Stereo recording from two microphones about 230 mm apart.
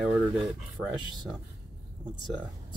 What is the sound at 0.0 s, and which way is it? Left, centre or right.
Speech, centre.